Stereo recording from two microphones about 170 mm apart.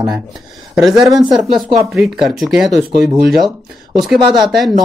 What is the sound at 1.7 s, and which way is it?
Speech, 15° right (ahead or behind).